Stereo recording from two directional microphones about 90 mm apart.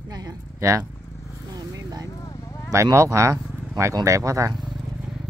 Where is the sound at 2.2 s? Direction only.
35° left (ahead or behind).